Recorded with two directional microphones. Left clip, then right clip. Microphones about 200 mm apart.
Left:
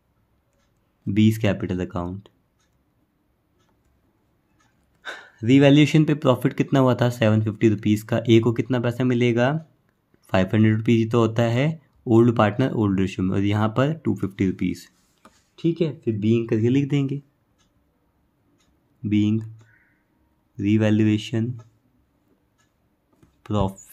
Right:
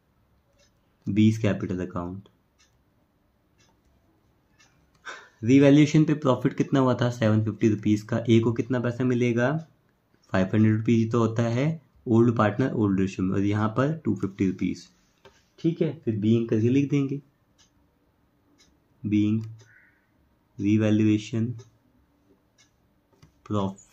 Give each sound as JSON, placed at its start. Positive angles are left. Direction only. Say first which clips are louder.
{"t": 1.1, "sound": "speech", "louder": "left 3 dB", "side_deg": 45}
{"t": 5.0, "sound": "speech", "louder": "left 3 dB", "side_deg": 45}
{"t": 19.0, "sound": "speech", "louder": "left 2 dB", "side_deg": 45}
{"t": 20.5, "sound": "speech", "louder": "left 3 dB", "side_deg": 45}
{"t": 23.4, "sound": "speech", "louder": "left 4 dB", "side_deg": 45}